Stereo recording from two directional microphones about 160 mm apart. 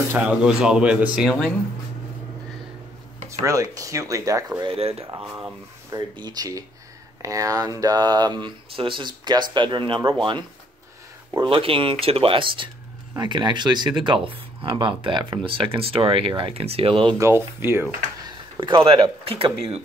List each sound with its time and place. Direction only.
0.1 s speech: 5° right (ahead or behind)
3.4 s speech: 20° right (ahead or behind)
4.6 s speech: 40° right (ahead or behind)
5.9 s speech: 25° right (ahead or behind)
11.3 s speech: 35° right (ahead or behind)
17.2 s speech: 15° right (ahead or behind)
18.2 s speech: 30° right (ahead or behind)